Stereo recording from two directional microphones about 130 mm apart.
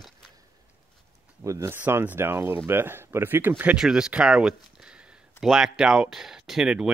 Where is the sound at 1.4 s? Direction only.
20° right (ahead or behind).